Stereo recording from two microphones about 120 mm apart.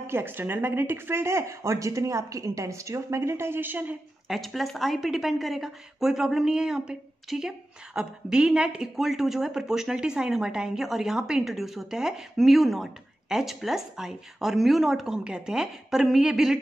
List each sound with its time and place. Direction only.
0.0 s speech: 20° right (ahead or behind)
4.3 s a woman's voice: centre (ahead or behind)